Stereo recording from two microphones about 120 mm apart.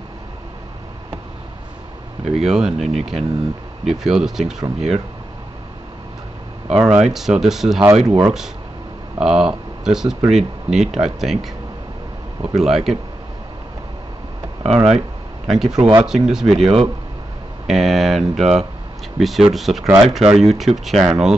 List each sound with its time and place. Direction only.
2.2 s speech: 5° right (ahead or behind)
6.8 s speech: 5° right (ahead or behind)
9.2 s speech: 5° right (ahead or behind)
12.4 s speech: 5° right (ahead or behind)
14.6 s speech: 60° right (ahead or behind)
15.4 s speech: 5° right (ahead or behind)
16.5 s speech: 55° right (ahead or behind)
17.6 s speech: centre (ahead or behind)
19.8 s speech: 30° right (ahead or behind)
20.2 s speech: 5° right (ahead or behind)